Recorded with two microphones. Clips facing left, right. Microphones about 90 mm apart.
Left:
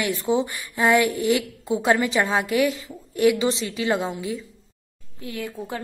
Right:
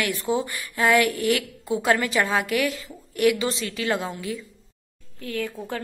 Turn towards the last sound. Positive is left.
turn(degrees=20)  # may be behind; listen again after turning